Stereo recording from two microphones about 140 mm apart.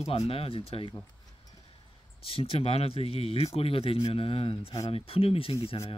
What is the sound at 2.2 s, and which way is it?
Speech, 40° left (ahead or behind).